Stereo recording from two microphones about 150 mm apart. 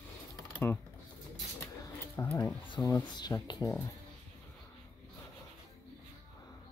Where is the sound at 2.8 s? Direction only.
20° left (ahead or behind).